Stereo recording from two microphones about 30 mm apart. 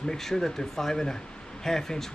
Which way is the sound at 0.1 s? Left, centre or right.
Centre.